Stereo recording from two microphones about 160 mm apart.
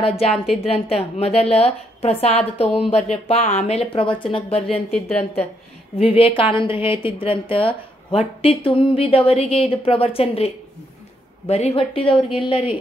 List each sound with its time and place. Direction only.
0.7 s a woman's voice: 40° left (ahead or behind)
4.9 s a woman's voice: 10° left (ahead or behind)
5.9 s a woman's voice: 35° left (ahead or behind)